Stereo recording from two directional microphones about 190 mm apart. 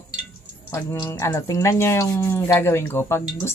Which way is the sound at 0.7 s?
15° left (ahead or behind).